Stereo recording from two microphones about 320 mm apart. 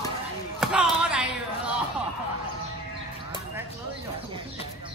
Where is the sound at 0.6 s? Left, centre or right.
Centre.